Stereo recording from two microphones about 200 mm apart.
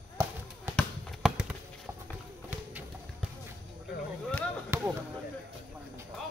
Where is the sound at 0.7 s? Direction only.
5° right (ahead or behind).